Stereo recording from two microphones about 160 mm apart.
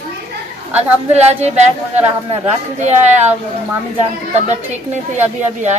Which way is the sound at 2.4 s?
45° right (ahead or behind).